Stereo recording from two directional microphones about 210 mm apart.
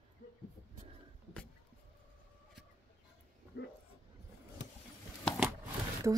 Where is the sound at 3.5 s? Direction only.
55° left (ahead or behind).